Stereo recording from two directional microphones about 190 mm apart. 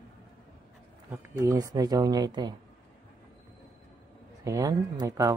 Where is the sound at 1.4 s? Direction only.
20° right (ahead or behind).